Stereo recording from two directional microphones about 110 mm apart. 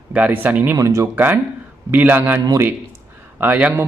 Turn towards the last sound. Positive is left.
turn(degrees=-15)  # may be behind; listen again after turning